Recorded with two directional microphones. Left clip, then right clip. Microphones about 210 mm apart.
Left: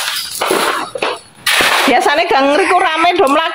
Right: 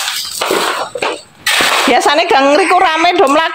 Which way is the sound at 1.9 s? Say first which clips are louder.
Right 1 dB; 40° right (ahead or behind).